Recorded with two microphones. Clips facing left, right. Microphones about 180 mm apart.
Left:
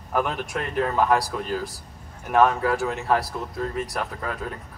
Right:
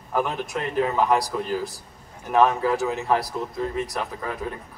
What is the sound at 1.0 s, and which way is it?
Speech, 20° right (ahead or behind).